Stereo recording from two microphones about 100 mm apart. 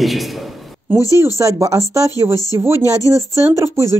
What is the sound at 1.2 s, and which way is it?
Speech, 30° right (ahead or behind).